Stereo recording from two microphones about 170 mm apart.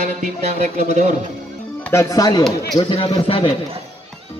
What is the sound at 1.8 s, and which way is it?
Speech, 15° left (ahead or behind).